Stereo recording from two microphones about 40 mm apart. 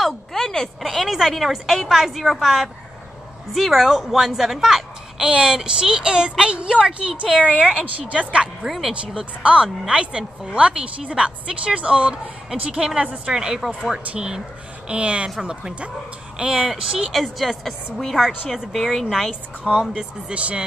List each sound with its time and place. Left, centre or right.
0.0 s a sound: centre
0.8 s a woman's voice: centre
5.2 s a woman's voice: right
8.6 s a woman's voice: centre
9.0 s a woman's voice: right
12.4 s a woman's voice: centre
16.5 s speech: centre
17.1 s a woman's voice: centre
19.6 s a woman's voice: centre